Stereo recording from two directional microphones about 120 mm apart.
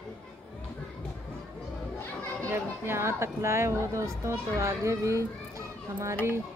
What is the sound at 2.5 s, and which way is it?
Speech, 20° right (ahead or behind).